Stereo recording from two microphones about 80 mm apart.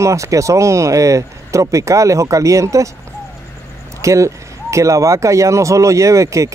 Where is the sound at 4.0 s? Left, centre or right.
Right.